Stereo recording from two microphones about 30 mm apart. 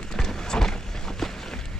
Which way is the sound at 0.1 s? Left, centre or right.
Centre.